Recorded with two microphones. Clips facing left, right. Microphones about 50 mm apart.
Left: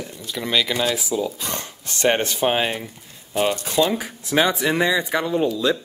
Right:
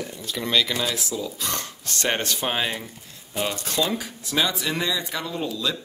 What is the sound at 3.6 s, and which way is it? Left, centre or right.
Speech, centre.